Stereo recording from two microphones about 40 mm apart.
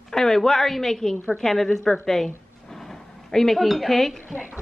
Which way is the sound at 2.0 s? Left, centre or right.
Centre.